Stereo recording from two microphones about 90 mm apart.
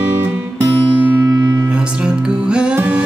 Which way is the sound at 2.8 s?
15° right (ahead or behind).